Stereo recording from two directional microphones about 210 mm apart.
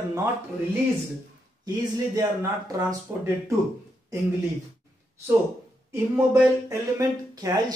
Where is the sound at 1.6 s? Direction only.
15° right (ahead or behind).